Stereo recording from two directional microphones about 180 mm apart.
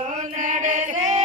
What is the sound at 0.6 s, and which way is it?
Choir, 40° right (ahead or behind).